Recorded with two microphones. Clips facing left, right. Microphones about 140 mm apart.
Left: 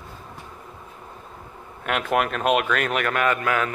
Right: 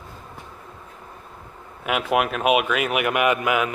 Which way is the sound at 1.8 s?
5° right (ahead or behind).